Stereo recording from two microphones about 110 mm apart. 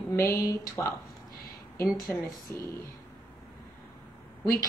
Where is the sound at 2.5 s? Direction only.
20° left (ahead or behind).